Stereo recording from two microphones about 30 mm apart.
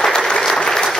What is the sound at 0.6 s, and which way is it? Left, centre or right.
Applause, left.